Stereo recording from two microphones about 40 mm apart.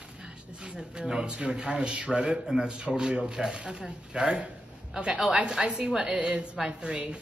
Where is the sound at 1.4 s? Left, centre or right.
Right.